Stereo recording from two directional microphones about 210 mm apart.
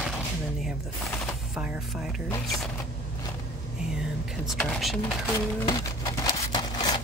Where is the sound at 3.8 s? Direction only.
5° right (ahead or behind).